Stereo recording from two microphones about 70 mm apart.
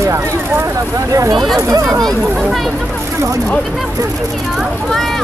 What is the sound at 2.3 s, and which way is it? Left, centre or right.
Speech, centre.